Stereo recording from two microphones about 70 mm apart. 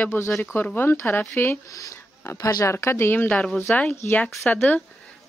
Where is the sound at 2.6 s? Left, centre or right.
Left.